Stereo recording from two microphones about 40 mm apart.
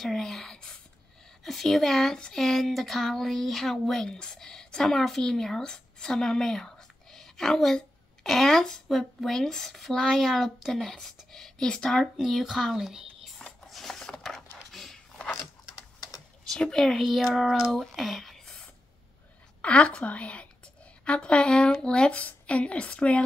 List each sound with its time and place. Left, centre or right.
0.0 s speech: centre
12.2 s speech: centre
13.7 s a sound: centre
13.9 s a sound: centre
16.4 s speech: centre
16.8 s speech: centre
18.4 s a sound: centre
19.6 s a woman's voice: left
22.1 s speech: left